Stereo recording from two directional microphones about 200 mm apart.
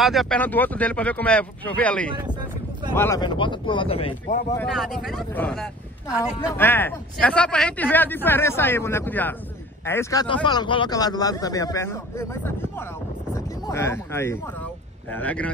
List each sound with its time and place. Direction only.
0.0 s a man's voice: centre (ahead or behind); by 4.1 s 25° left (ahead or behind)
4.6 s a man's voice: centre (ahead or behind)
10.2 s a man's voice: 25° left (ahead or behind); by 15.5 s 5° left (ahead or behind)